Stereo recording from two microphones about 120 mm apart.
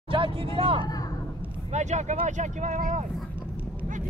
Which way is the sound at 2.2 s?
85° right.